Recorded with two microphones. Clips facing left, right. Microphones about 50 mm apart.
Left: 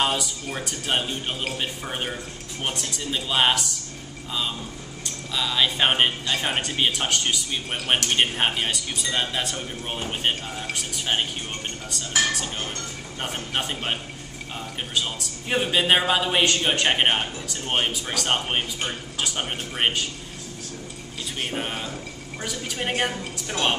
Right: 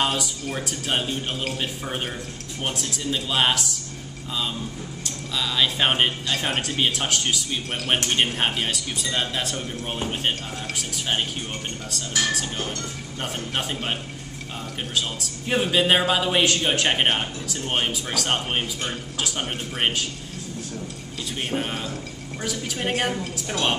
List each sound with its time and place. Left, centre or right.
0.0 s speech: centre
5.0 s speech: centre
13.2 s speech: centre
15.0 s speech: centre
21.4 s a woman's voice: centre